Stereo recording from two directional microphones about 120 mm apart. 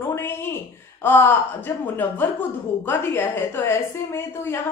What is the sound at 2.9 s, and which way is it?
A woman's voice, 15° left (ahead or behind).